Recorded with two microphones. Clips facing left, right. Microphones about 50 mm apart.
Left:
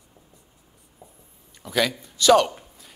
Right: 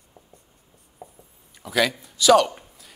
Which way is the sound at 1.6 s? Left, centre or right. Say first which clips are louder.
Right 1 dB; centre.